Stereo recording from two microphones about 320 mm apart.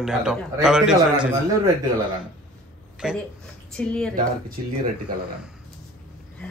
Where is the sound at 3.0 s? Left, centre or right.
Centre.